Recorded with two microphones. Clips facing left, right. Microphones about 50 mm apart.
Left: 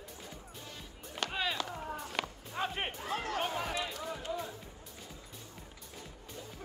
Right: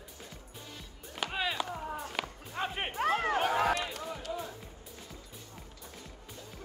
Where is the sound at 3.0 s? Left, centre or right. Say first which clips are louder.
Right 13 dB; right.